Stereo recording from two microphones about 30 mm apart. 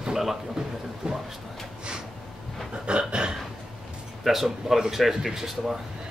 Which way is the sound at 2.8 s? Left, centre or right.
Right.